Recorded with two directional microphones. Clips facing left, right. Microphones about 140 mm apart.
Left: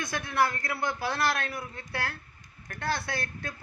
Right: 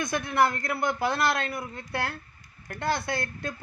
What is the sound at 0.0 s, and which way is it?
Speech, 20° right (ahead or behind).